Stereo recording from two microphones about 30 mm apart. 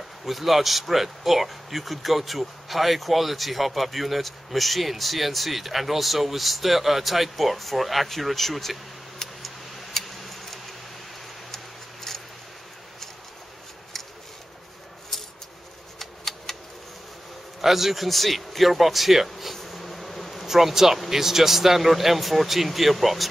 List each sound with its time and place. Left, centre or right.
0.2 s speech: centre
9.2 s a sound: centre
9.9 s tick-tock: centre
11.5 s scissors: centre
16.0 s typewriter: centre
17.6 s speech: centre
19.5 s bee: centre
20.4 s speech: centre